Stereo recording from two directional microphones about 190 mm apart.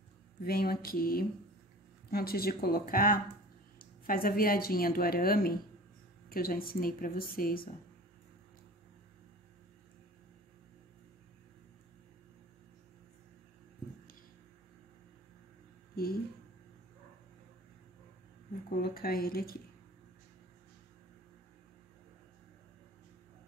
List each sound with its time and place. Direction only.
0.4 s a woman's voice: 50° left (ahead or behind)
18.7 s a woman's voice: 50° left (ahead or behind)